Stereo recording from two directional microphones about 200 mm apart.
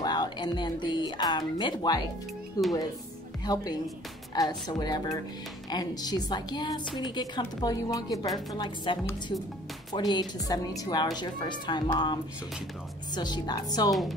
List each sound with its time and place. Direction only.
0.0 s music: 20° left (ahead or behind)
1.6 s speech: 20° left (ahead or behind)
9.9 s speech: 20° left (ahead or behind)